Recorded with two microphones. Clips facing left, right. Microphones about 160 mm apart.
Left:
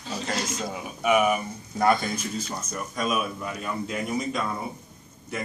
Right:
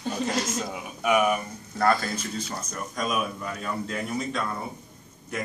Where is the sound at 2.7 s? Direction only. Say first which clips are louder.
Left 3 dB; 5° left (ahead or behind).